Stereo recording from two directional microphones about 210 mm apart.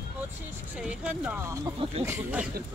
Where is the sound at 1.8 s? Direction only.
30° right (ahead or behind).